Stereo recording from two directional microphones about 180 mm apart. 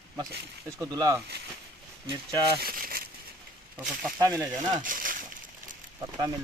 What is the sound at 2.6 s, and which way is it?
Crumpling, 55° right (ahead or behind).